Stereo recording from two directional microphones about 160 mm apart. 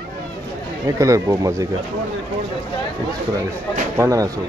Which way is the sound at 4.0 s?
20° right (ahead or behind).